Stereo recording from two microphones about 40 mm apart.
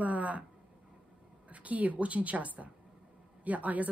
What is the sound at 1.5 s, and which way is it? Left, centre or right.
Speech, right.